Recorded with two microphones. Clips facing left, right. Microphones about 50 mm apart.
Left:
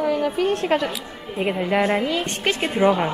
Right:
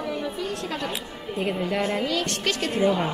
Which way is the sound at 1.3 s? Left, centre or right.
Left.